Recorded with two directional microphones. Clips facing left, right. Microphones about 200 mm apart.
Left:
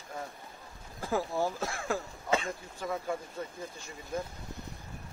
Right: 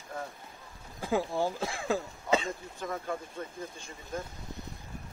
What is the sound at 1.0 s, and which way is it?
Speech, 15° right (ahead or behind).